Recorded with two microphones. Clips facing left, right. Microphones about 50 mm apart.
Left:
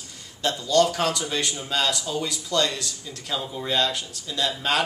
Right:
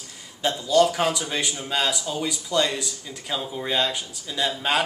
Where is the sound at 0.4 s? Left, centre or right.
Centre.